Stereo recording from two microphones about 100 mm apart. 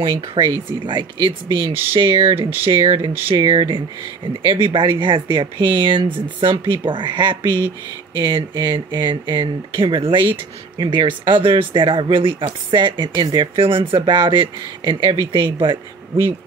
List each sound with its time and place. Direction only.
0.0 s speech: 50° right (ahead or behind)